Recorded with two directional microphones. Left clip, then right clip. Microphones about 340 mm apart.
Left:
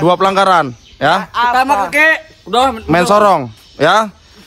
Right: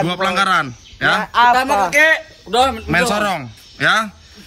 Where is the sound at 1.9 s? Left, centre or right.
Left.